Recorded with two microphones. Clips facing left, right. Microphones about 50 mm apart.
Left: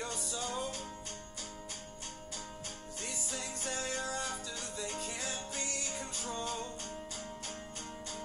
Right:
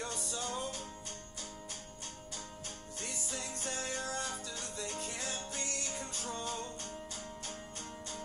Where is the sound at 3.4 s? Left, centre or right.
Centre.